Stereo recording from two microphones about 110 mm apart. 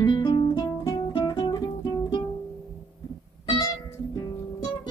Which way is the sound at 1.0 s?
40° left (ahead or behind).